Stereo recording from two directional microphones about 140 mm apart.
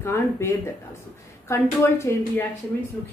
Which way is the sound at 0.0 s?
20° left (ahead or behind).